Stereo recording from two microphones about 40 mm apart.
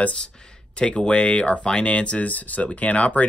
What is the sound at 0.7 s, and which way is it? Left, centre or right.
Speech, left.